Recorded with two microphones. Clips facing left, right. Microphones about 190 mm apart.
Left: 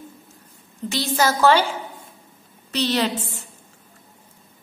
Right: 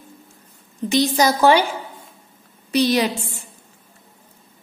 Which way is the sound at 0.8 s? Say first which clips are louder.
Right 4 dB; 15° right (ahead or behind).